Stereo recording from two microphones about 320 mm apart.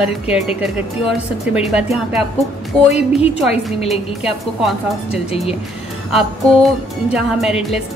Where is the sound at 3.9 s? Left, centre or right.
Centre.